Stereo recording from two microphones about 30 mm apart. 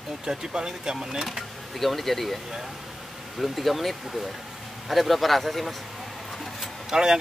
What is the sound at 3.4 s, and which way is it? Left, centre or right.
Speech, centre.